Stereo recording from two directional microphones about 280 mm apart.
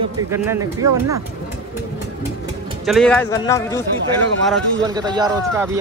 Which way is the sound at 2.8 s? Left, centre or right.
Centre.